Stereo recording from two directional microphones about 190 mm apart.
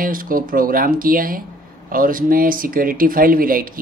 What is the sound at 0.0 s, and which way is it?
Speech, 45° right (ahead or behind).